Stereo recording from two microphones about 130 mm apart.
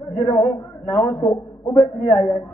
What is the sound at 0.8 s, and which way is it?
Speech, 40° left (ahead or behind).